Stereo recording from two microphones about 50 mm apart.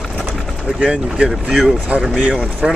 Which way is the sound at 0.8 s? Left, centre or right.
Centre.